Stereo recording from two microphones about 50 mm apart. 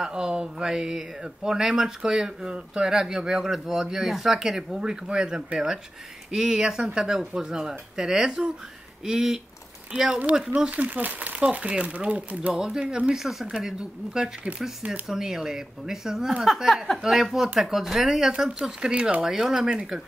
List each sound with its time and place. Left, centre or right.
0.0 s speech: centre
10.0 s speech: right
10.3 s speech: centre
10.7 s speech: right
12.5 s speech: centre
13.1 s speech: centre
14.9 s speech: centre
18.6 s speech: right